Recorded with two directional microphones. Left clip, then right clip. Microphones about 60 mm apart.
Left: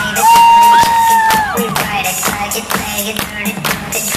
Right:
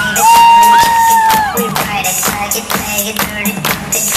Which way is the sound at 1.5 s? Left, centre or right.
Centre.